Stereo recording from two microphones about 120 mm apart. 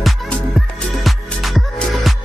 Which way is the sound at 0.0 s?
Centre (ahead or behind).